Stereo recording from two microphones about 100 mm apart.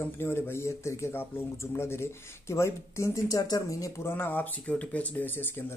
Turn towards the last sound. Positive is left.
turn(degrees=20)  # may be behind; listen again after turning